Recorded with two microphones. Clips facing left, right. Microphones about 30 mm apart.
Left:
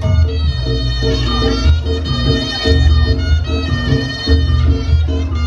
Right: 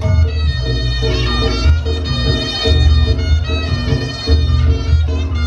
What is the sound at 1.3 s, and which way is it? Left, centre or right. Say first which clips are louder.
Music: left 2 dB; centre.